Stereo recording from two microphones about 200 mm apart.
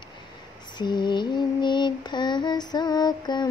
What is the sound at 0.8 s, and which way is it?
Female singing, 20° left (ahead or behind).